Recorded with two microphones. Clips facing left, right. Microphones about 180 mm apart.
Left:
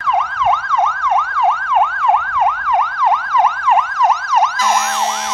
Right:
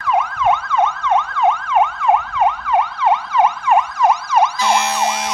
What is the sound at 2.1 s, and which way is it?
Emergency vehicle, 5° right (ahead or behind).